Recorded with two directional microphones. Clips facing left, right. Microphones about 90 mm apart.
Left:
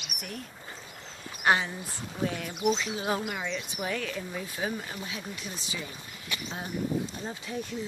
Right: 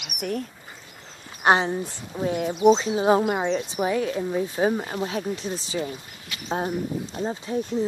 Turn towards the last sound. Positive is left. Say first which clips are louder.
# right 9 dB
turn(degrees=-35)  # may be behind; listen again after turning